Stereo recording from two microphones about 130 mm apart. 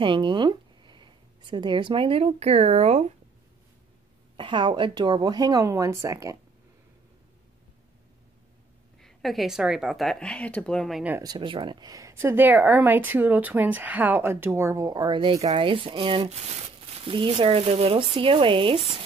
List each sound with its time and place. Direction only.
0.0 s speech: 40° right (ahead or behind)
4.4 s speech: 40° right (ahead or behind)
9.0 s speech: centre (ahead or behind)
11.3 s speech: 40° right (ahead or behind)